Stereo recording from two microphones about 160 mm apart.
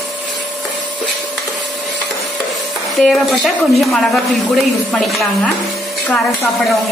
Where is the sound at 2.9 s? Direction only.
Centre (ahead or behind).